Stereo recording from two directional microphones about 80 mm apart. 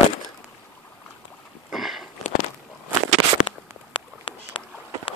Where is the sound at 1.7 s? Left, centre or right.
Centre.